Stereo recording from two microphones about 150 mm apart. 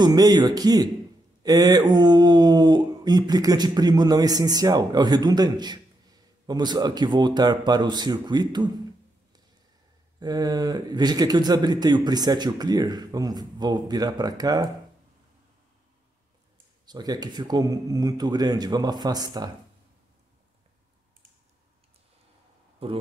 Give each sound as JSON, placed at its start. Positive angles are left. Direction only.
{"t": 0.0, "sound": "speech", "side_deg": -25}
{"t": 10.2, "sound": "speech", "side_deg": -25}
{"t": 16.8, "sound": "speech", "side_deg": -25}
{"t": 22.8, "sound": "speech", "side_deg": -40}